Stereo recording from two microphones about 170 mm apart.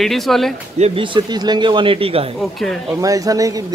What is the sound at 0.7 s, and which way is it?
Speech, 35° right (ahead or behind).